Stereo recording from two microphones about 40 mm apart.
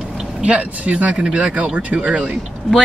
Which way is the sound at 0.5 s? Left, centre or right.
Right.